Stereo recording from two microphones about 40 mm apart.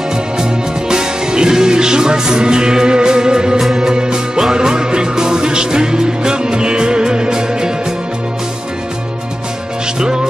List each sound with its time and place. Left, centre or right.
0.1 s music: centre
9.9 s music: centre